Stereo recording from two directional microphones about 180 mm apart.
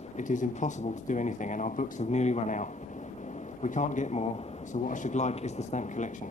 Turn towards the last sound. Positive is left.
turn(degrees=45)  # may be behind; listen again after turning